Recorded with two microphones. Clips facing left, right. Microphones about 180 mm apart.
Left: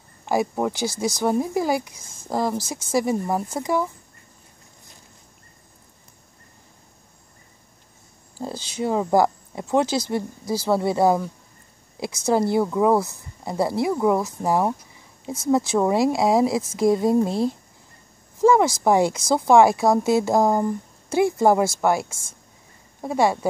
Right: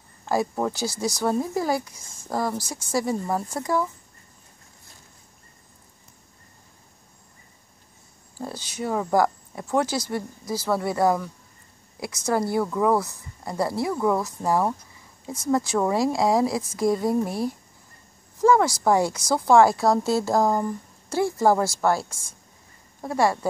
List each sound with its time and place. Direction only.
0.2 s speech: 15° left (ahead or behind)
8.5 s speech: 25° left (ahead or behind)
23.0 s speech: 20° left (ahead or behind)